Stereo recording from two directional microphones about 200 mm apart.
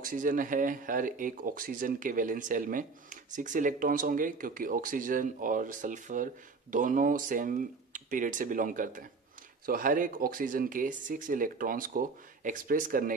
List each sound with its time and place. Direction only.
0.0 s speech: 45° right (ahead or behind)